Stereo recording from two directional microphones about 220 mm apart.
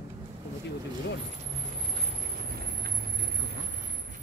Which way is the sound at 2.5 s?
45° right (ahead or behind).